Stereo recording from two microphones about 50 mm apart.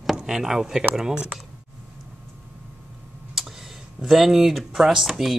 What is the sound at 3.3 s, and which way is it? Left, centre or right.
Speech, centre.